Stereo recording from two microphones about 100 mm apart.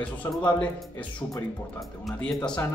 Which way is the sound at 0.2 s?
35° left (ahead or behind).